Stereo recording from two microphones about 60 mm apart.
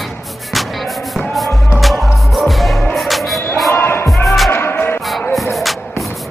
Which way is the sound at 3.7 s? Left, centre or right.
Left.